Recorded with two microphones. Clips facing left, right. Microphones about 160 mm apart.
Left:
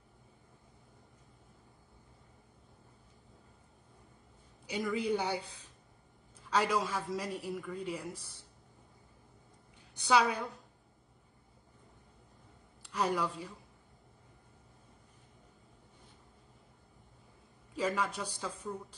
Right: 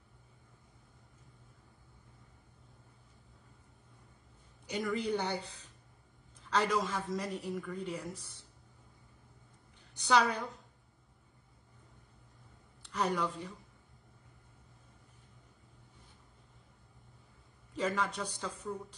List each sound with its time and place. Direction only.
4.6 s a man's voice: 10° left (ahead or behind)
9.9 s a man's voice: 10° left (ahead or behind)
12.8 s speech: 10° left (ahead or behind)
17.7 s a man's voice: 10° left (ahead or behind)